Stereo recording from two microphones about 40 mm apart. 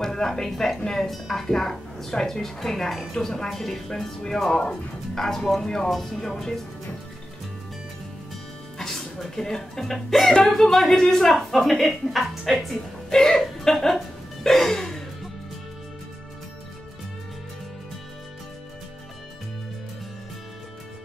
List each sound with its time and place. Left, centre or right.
0.0 s speech: centre
8.7 s speech: centre
13.1 s speech: centre
14.4 s music: centre